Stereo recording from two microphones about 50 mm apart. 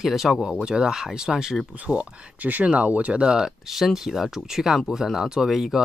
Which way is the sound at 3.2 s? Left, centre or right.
Centre.